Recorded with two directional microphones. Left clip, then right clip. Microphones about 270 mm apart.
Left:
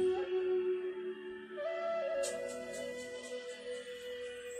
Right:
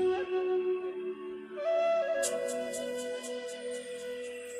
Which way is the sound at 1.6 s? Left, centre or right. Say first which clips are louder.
Right 8 dB; right.